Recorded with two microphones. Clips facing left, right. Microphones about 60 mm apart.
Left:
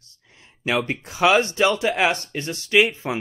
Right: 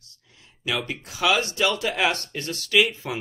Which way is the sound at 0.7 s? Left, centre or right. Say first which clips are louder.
Left 5 dB; left.